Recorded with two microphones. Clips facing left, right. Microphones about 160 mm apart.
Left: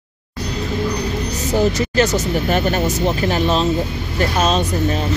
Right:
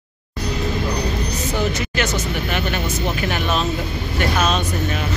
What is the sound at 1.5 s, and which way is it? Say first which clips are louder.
Speech: left 8 dB; 40° left (ahead or behind).